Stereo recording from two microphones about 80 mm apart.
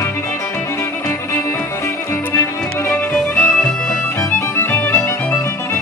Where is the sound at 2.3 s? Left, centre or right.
Left.